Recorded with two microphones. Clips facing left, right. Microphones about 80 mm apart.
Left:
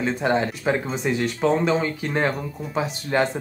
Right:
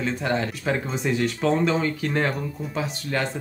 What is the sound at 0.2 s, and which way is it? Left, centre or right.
Speech, centre.